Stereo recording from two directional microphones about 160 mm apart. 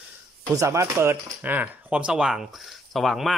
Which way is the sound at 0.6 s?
20° right (ahead or behind).